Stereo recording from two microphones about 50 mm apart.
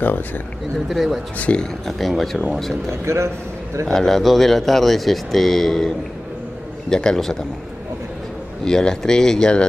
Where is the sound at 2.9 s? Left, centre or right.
Right.